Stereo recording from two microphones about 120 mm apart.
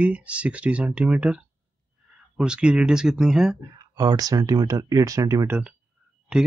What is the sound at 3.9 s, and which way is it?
Speech, 30° right (ahead or behind).